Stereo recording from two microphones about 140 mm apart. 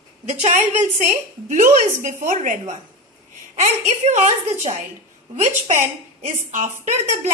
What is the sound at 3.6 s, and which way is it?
A woman's voice, 55° right (ahead or behind).